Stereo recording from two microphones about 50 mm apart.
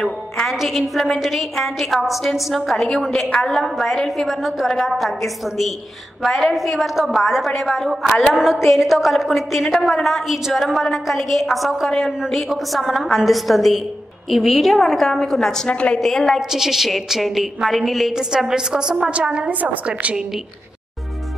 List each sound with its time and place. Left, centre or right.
0.0 s a woman's voice: centre
15.7 s a woman's voice: left
16.0 s a woman's voice: centre
16.3 s a woman's voice: centre
18.1 s a woman's voice: centre; by 20.2 s right